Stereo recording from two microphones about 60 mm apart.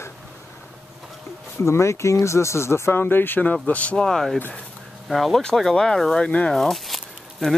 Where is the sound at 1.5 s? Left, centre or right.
Left.